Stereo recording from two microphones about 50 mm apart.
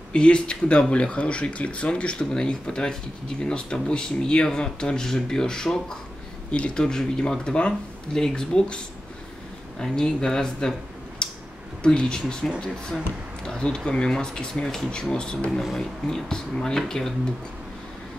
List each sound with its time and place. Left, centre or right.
0.1 s speech: left
11.2 s a sound: centre
11.8 s speech: centre